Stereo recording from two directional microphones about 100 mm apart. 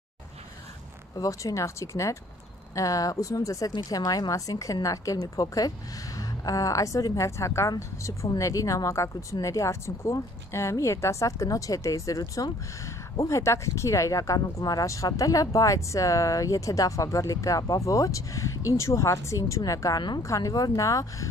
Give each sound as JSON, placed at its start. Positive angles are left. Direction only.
{"t": 1.1, "sound": "a woman's voice", "side_deg": 35}